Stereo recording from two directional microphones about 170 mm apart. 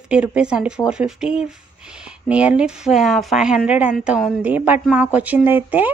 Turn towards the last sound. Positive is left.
turn(degrees=-10)  # may be behind; listen again after turning